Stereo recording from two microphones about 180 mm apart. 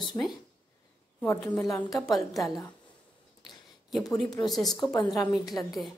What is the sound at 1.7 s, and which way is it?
A woman's voice, 20° left (ahead or behind).